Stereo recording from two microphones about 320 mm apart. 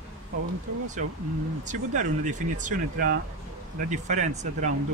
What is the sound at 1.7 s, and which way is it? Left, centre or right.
Speech, right.